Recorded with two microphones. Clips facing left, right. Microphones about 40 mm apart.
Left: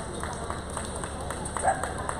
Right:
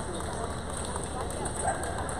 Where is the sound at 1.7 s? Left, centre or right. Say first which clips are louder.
Left 6 dB; centre.